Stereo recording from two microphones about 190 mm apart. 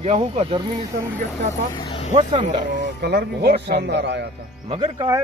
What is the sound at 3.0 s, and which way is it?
A man's voice, 60° right (ahead or behind).